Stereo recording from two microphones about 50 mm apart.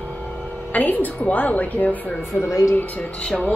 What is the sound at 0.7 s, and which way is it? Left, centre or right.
Speech, left.